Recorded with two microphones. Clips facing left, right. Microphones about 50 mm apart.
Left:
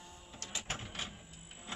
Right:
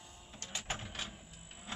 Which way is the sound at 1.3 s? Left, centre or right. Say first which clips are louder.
Even; centre.